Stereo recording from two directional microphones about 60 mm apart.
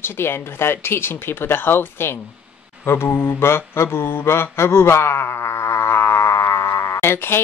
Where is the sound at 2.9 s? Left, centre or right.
Left.